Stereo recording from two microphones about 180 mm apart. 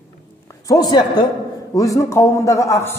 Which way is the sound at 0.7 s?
20° left (ahead or behind).